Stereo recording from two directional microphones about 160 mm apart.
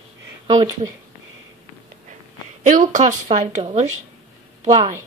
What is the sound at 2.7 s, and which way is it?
Speech, 50° right (ahead or behind).